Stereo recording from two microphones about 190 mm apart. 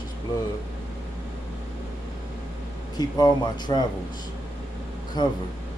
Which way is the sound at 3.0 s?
20° left (ahead or behind).